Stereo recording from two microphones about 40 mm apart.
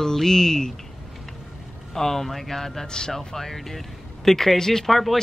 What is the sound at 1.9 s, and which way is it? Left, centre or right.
Speech, centre.